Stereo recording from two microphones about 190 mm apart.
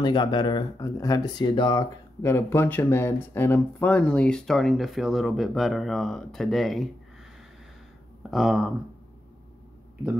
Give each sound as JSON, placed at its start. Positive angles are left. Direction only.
{"t": 0.0, "sound": "speech", "side_deg": 25}
{"t": 2.2, "sound": "speech", "side_deg": 15}
{"t": 8.2, "sound": "speech", "side_deg": 0}